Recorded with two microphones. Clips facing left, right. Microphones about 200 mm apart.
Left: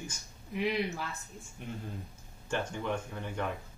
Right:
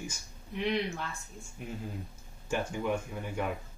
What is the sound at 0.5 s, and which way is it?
A woman's voice, 5° left (ahead or behind).